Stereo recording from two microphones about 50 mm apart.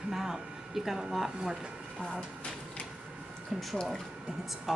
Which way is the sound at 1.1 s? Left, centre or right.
Centre.